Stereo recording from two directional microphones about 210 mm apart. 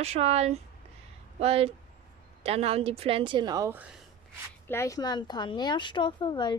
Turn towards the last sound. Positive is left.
turn(degrees=20)  # may be behind; listen again after turning